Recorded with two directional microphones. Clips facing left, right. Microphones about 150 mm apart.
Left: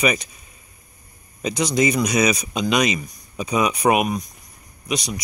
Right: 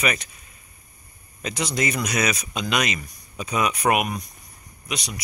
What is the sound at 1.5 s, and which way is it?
Speech, 5° right (ahead or behind).